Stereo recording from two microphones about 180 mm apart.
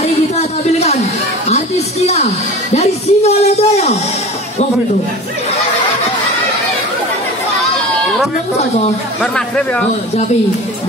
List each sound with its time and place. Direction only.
0.0 s a sound: 35° left (ahead or behind)
1.5 s music: 35° left (ahead or behind)
9.2 s speech: 5° left (ahead or behind)